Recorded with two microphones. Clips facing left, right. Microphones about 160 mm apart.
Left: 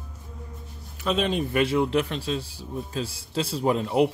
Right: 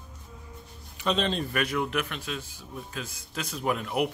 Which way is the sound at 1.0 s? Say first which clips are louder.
Left 3 dB; 5° left (ahead or behind).